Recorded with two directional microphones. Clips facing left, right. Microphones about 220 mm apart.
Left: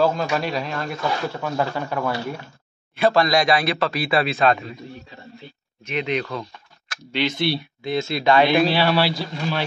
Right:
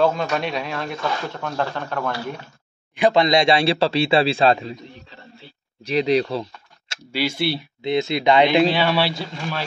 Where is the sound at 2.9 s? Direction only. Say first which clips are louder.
Right 1 dB; 20° right (ahead or behind).